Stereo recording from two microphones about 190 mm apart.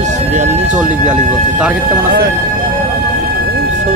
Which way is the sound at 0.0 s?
40° right (ahead or behind).